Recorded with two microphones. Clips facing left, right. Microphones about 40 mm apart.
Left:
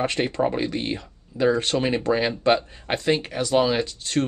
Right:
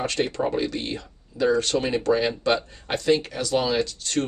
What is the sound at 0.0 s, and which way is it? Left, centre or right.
Speech, left.